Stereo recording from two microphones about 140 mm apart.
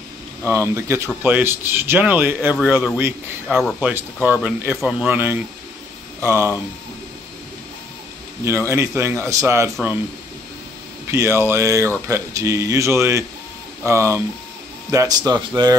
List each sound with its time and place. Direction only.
0.4 s speech: 20° right (ahead or behind); by 3.7 s 5° left (ahead or behind)
3.8 s a man's voice: 10° right (ahead or behind)
8.5 s a man's voice: 20° right (ahead or behind)
11.1 s a man's voice: 20° right (ahead or behind)